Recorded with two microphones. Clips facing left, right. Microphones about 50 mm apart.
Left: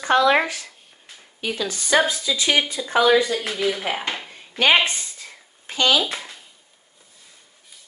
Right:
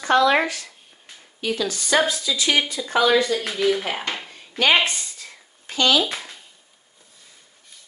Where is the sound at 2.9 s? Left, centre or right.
Centre.